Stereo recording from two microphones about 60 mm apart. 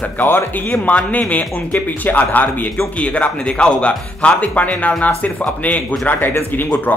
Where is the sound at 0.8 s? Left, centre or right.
Left.